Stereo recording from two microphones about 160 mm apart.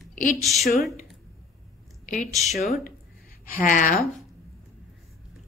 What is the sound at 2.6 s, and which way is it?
Speech, 70° left (ahead or behind).